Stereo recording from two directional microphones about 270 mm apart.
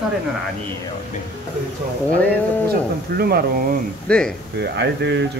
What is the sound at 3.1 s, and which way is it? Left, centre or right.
Speech, right.